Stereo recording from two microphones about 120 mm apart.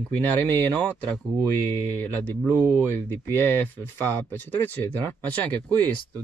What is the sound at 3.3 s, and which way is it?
Speech, 20° left (ahead or behind).